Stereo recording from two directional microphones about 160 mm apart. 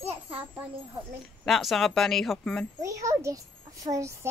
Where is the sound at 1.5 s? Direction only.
Centre (ahead or behind).